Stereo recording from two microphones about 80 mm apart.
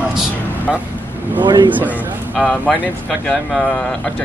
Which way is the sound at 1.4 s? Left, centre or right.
Right.